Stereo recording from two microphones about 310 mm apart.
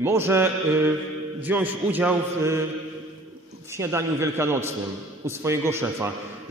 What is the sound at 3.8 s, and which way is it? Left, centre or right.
A man's voice, centre.